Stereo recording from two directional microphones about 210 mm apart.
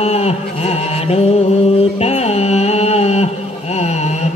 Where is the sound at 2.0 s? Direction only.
30° left (ahead or behind).